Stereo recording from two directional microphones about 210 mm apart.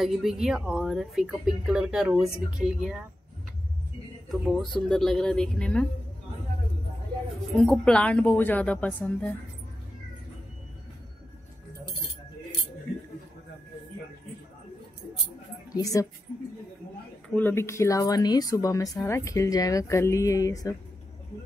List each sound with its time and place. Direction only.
0.0 s speech: centre (ahead or behind)
4.3 s speech: centre (ahead or behind)
7.5 s speech: 5° left (ahead or behind)
15.7 s speech: 15° left (ahead or behind)
17.3 s speech: 10° left (ahead or behind)